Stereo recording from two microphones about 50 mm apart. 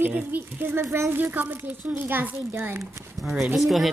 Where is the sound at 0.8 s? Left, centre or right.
Right.